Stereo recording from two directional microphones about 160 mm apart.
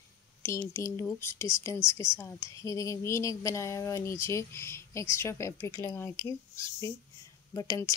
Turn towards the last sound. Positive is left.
turn(degrees=20)  # may be behind; listen again after turning